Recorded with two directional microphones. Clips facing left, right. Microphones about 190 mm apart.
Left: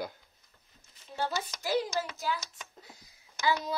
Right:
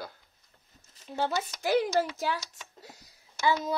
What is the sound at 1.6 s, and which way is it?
Speech, 60° right (ahead or behind).